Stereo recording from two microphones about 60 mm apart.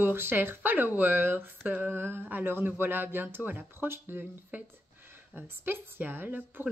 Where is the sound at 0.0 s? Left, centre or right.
Right.